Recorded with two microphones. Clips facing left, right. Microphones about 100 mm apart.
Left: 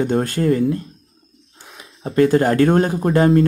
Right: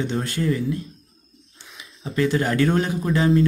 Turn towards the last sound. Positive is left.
turn(degrees=50)  # may be behind; listen again after turning